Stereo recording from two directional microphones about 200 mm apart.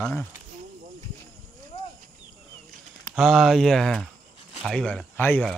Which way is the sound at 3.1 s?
5° right (ahead or behind).